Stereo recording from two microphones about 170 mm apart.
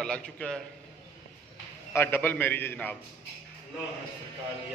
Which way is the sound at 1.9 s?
15° left (ahead or behind).